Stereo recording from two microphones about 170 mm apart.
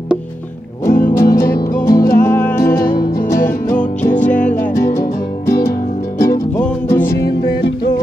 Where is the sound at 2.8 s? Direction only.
65° left (ahead or behind).